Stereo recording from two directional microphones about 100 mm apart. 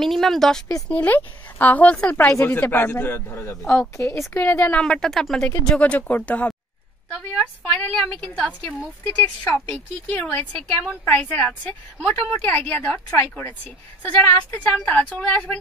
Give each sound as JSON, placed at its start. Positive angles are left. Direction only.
{"t": 0.0, "sound": "speech", "side_deg": 0}
{"t": 0.8, "sound": "a woman's voice", "side_deg": 15}
{"t": 4.3, "sound": "a woman's voice", "side_deg": 20}
{"t": 9.0, "sound": "a man's voice", "side_deg": 25}